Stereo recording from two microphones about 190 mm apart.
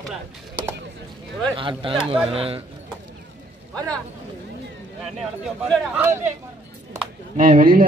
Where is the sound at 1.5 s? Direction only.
25° right (ahead or behind).